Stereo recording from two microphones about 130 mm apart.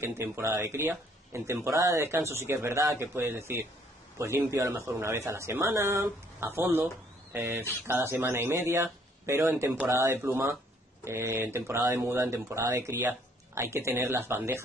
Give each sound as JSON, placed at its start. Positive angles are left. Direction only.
{"t": 0.0, "sound": "speech", "side_deg": -20}